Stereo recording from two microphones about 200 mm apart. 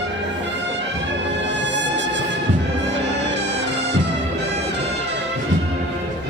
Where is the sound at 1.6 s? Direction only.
60° right (ahead or behind).